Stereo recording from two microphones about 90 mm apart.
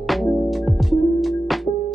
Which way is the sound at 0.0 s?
Centre (ahead or behind).